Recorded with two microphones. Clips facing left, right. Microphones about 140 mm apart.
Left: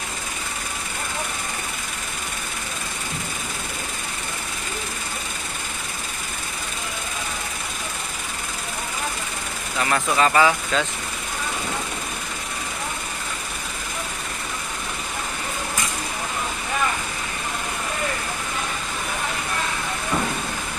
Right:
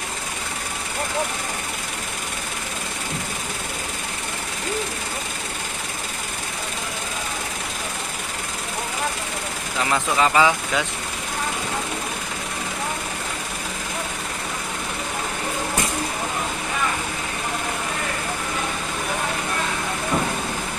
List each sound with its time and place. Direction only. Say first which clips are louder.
9.8 s speech: even; 15° right (ahead or behind)